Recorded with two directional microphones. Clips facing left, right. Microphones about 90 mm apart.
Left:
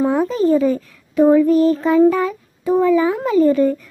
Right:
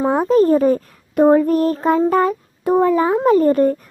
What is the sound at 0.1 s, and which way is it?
A child's voice, 50° right (ahead or behind).